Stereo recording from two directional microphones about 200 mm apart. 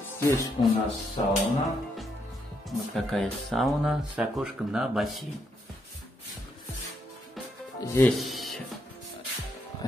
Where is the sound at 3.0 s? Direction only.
Centre (ahead or behind).